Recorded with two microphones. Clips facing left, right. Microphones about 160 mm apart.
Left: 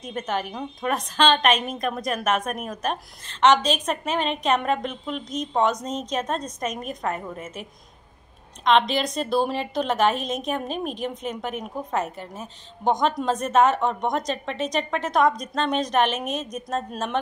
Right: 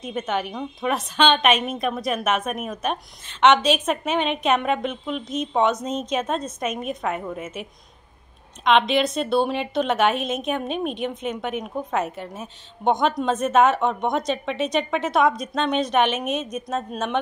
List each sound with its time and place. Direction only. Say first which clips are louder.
0.0 s a woman's voice: right 2 dB; 5° right (ahead or behind)
8.6 s a woman's voice: right 2 dB; centre (ahead or behind)